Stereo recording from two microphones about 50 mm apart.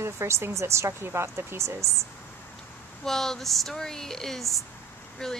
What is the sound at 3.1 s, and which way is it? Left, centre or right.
Speech, centre.